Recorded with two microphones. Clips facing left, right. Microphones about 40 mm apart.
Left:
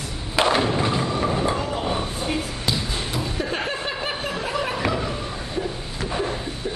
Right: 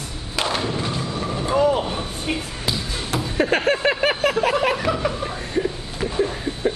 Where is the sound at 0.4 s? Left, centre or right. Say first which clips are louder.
Left 4 dB; centre.